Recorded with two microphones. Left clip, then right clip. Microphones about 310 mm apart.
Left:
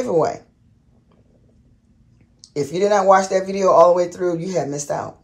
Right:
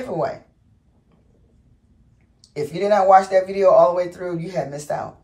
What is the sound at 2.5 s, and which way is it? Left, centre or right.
Speech, centre.